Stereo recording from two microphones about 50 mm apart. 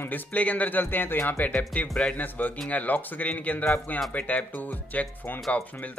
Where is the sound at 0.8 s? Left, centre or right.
Left.